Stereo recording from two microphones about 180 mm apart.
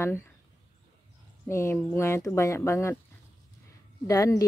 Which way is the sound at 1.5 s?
15° left (ahead or behind).